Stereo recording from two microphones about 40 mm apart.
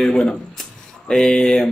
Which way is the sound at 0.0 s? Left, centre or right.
Centre.